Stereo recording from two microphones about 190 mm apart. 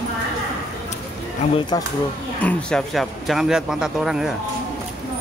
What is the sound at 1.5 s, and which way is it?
Speech, 20° left (ahead or behind).